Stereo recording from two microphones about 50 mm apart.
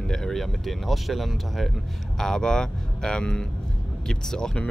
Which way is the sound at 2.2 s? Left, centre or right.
Centre.